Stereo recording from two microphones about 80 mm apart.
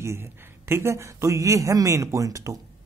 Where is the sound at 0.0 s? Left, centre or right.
Right.